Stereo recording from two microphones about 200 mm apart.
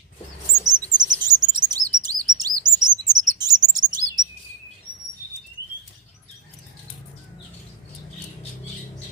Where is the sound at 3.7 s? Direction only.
20° right (ahead or behind).